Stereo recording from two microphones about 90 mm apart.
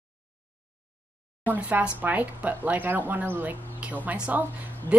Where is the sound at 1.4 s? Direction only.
20° right (ahead or behind).